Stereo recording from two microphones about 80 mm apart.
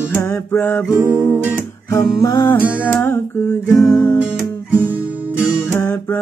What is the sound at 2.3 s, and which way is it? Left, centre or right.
Music, left.